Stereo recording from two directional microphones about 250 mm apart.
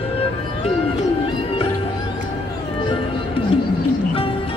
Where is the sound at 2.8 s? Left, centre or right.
Left.